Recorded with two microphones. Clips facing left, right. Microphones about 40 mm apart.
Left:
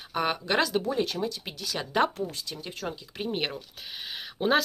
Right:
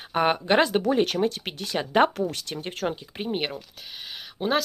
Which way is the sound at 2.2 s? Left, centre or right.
Right.